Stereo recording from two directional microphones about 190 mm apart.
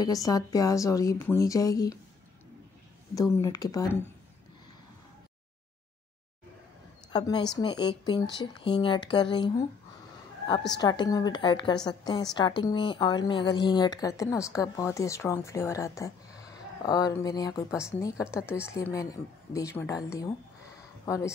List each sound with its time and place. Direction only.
0.0 s speech: 20° left (ahead or behind)
3.3 s a woman's voice: 20° left (ahead or behind)
7.1 s a woman's voice: 20° left (ahead or behind)
10.7 s a woman's voice: 20° left (ahead or behind)
18.4 s speech: 5° right (ahead or behind)
18.7 s speech: 15° left (ahead or behind)